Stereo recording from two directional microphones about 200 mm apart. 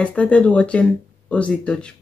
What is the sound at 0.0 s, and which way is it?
A woman's voice, 5° left (ahead or behind).